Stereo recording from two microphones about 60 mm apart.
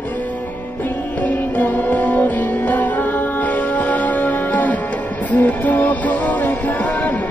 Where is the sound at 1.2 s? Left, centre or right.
Left.